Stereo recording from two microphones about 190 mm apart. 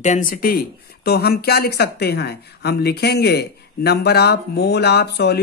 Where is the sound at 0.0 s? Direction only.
45° left (ahead or behind).